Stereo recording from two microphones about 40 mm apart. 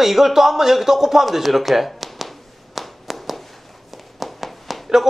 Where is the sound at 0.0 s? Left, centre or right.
Centre.